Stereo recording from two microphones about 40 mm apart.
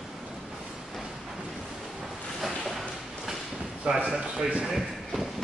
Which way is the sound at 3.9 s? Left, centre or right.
Right.